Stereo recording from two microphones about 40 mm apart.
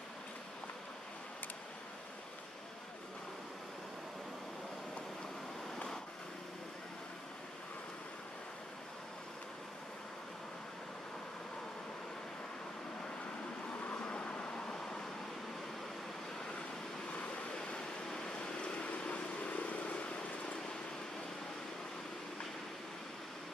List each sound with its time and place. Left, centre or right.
13.8 s vehicle: left
17.6 s vehicle: left